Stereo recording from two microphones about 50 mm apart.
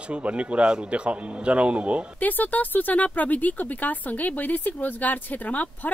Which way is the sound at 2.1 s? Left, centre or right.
Left.